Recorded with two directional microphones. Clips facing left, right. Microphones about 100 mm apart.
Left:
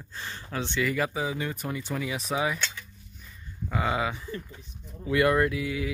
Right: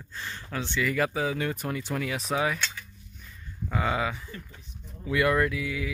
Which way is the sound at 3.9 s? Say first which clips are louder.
Left 1 dB; 25° left (ahead or behind).